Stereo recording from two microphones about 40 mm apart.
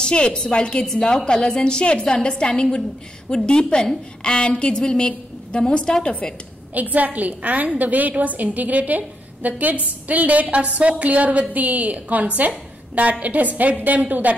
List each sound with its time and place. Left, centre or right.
0.0 s a woman's voice: left
6.7 s a woman's voice: right